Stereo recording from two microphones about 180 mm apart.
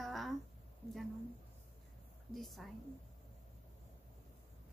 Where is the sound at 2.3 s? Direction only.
Centre (ahead or behind).